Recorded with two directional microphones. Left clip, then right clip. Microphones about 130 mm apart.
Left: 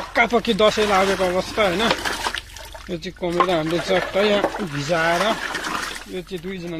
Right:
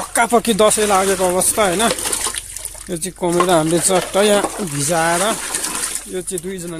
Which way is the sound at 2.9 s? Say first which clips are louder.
Right 6 dB; 55° right (ahead or behind).